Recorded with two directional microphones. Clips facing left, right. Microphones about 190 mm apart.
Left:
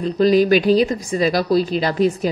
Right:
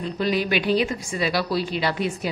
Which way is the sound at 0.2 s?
40° left (ahead or behind).